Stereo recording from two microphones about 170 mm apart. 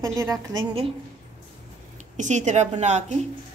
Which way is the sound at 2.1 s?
45° right (ahead or behind).